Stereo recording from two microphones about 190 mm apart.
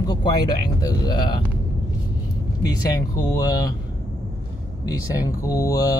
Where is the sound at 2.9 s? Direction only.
20° left (ahead or behind).